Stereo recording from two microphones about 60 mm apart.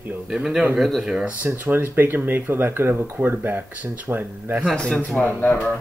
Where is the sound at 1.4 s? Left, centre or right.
Right.